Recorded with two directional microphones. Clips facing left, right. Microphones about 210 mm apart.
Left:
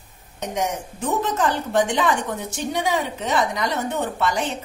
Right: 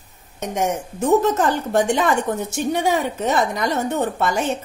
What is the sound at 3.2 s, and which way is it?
A woman's voice, 45° right (ahead or behind).